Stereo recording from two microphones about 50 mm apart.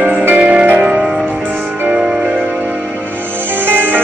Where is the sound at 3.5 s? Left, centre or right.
Right.